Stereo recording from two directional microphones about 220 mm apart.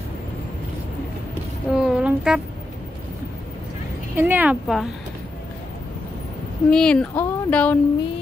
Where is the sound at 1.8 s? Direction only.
5° right (ahead or behind).